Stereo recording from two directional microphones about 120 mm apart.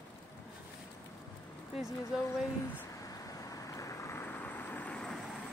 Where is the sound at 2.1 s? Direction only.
5° right (ahead or behind).